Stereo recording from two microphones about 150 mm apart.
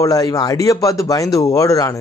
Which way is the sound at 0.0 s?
25° left (ahead or behind).